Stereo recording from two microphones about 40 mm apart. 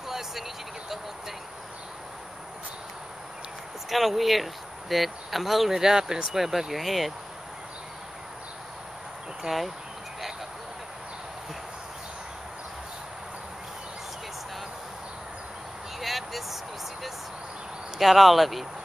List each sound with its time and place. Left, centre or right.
0.1 s vehicle: centre
3.9 s speech: centre
5.8 s speech: centre
6.7 s speech: centre
9.5 s speech: right
16.0 s a sound: centre
17.9 s speech: centre